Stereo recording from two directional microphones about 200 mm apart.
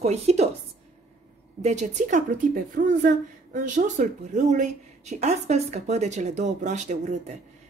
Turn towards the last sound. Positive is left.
turn(degrees=-35)  # may be behind; listen again after turning